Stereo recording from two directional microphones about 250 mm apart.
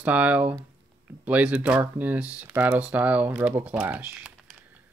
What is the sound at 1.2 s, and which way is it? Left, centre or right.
Speech, centre.